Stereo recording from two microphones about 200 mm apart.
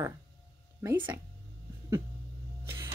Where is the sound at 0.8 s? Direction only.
10° right (ahead or behind).